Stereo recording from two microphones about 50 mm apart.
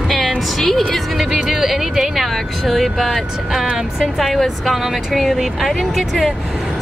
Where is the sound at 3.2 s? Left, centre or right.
Centre.